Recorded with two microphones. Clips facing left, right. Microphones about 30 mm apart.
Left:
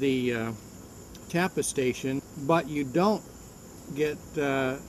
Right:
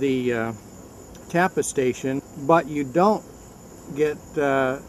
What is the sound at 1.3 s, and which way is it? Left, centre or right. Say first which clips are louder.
Speech: right 7 dB; centre.